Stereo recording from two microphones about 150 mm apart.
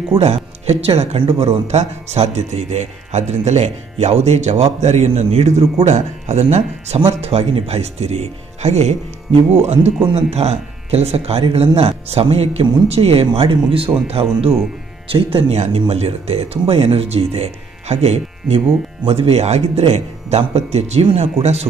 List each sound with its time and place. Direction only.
0.1 s speech: 45° right (ahead or behind)